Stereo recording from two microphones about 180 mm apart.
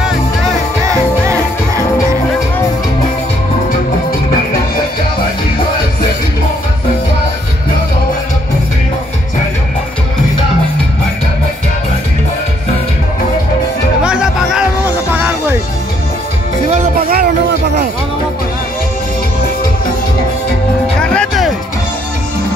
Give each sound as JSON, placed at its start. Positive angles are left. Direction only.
{"t": 0.8, "sound": "music", "side_deg": -15}
{"t": 14.0, "sound": "music", "side_deg": -5}
{"t": 16.7, "sound": "music", "side_deg": -40}
{"t": 17.2, "sound": "music", "side_deg": -70}
{"t": 21.0, "sound": "music", "side_deg": 5}